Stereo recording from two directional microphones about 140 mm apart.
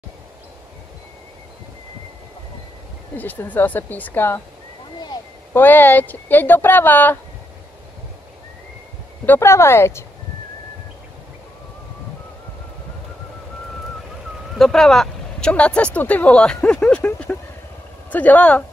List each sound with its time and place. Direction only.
3.2 s speech: 10° left (ahead or behind)
5.5 s speech: 15° left (ahead or behind)
9.2 s speech: 15° left (ahead or behind)
14.6 s speech: 5° left (ahead or behind)